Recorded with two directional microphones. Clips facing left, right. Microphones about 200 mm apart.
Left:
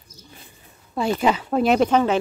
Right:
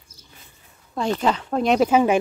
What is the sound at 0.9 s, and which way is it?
Speech, 10° left (ahead or behind).